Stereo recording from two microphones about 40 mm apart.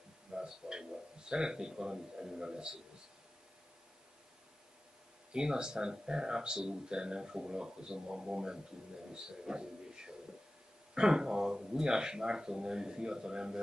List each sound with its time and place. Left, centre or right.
0.3 s a sound: centre
1.3 s speech: centre
5.3 s speech: right